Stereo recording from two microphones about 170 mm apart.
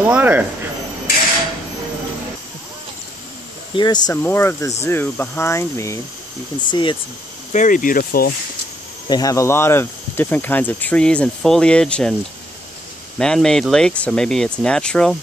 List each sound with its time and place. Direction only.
0.0 s speech: 10° right (ahead or behind)
3.7 s speech: 25° left (ahead or behind)
4.1 s speech: 15° left (ahead or behind)
6.6 s speech: 30° left (ahead or behind)
7.5 s speech: 50° left (ahead or behind)
9.1 s speech: 20° left (ahead or behind)
13.2 s speech: 5° left (ahead or behind)